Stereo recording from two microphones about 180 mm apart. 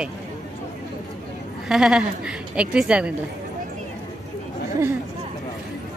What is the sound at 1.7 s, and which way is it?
Speech, 5° right (ahead or behind).